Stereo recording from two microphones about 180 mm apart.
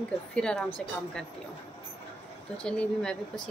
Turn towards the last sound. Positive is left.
turn(degrees=5)  # may be behind; listen again after turning